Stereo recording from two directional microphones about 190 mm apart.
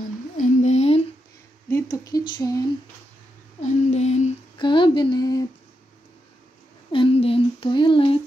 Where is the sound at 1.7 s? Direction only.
20° left (ahead or behind).